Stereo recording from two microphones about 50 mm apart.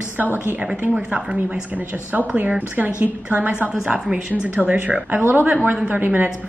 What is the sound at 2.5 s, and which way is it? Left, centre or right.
A woman's voice, right.